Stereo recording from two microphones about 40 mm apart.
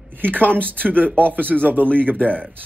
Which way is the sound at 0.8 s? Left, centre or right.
Right.